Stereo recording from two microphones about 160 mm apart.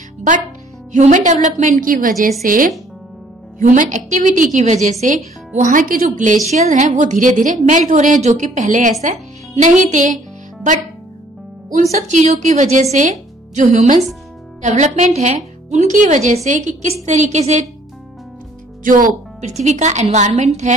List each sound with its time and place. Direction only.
0.9 s a woman's voice: 50° right (ahead or behind)
11.9 s a woman's voice: 45° right (ahead or behind)
18.9 s a woman's voice: 55° right (ahead or behind)